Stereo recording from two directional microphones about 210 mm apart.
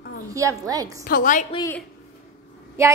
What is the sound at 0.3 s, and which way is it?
Speech, 15° right (ahead or behind).